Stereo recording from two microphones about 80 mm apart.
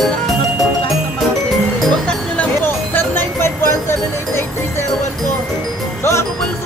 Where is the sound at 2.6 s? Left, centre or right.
Left.